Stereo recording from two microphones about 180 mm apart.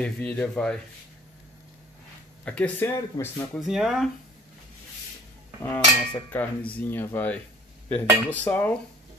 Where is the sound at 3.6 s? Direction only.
Centre (ahead or behind).